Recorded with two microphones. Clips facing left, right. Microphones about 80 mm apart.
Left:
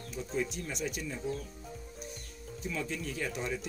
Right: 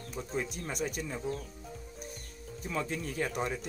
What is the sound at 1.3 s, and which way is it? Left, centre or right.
Speech, centre.